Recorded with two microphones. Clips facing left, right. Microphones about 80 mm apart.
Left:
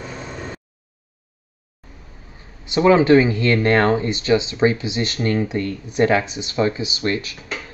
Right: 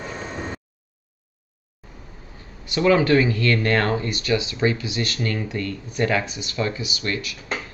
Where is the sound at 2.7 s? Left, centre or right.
Left.